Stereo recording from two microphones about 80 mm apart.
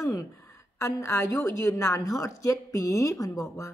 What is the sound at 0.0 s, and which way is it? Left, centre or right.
A woman's voice, left.